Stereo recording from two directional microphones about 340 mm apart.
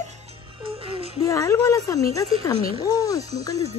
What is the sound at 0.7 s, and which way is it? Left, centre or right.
Music, centre.